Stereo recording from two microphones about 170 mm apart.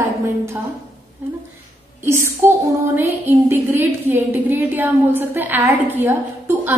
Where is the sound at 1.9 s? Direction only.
15° right (ahead or behind).